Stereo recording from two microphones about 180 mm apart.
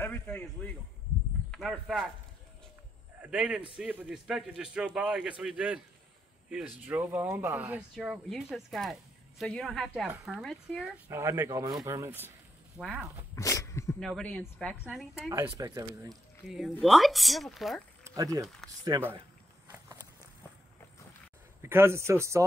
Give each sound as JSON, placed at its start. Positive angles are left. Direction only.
{"t": 0.0, "sound": "a man's voice", "side_deg": 10}
{"t": 3.2, "sound": "a man's voice", "side_deg": -5}
{"t": 11.1, "sound": "speech", "side_deg": -15}
{"t": 12.7, "sound": "a man's voice", "side_deg": 0}
{"t": 13.3, "sound": "sneeze", "side_deg": 15}
{"t": 13.9, "sound": "a man's voice", "side_deg": 5}
{"t": 15.2, "sound": "speech", "side_deg": -20}
{"t": 16.1, "sound": "a man's voice", "side_deg": 0}
{"t": 18.1, "sound": "speech", "side_deg": -20}
{"t": 21.5, "sound": "speech", "side_deg": -15}